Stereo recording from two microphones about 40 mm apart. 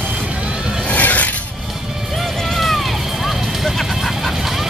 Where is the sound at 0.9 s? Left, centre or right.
Left.